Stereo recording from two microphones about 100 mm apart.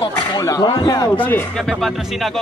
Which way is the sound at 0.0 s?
50° left (ahead or behind).